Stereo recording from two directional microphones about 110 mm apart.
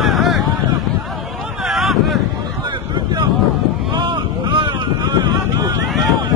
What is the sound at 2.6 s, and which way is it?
Boat, 45° right (ahead or behind).